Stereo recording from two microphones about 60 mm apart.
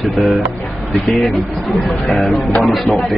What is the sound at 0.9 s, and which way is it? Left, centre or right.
Speech, centre.